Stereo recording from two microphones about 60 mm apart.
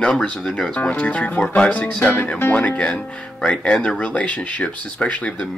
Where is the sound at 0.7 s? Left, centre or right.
Left.